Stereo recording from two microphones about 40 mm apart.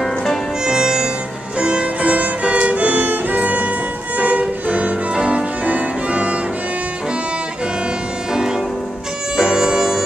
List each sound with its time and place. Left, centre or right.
0.0 s music: centre
0.7 s music: centre
5.7 s violin: right
8.3 s music: centre